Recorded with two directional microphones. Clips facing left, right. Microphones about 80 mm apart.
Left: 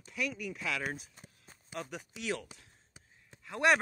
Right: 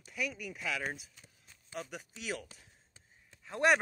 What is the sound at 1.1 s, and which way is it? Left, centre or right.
Walk, left.